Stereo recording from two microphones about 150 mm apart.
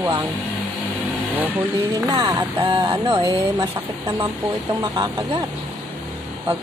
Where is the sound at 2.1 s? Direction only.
30° right (ahead or behind).